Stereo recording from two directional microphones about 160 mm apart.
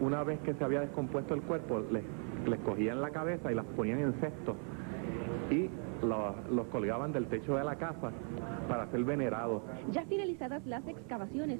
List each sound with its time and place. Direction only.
0.0 s speech: 10° left (ahead or behind)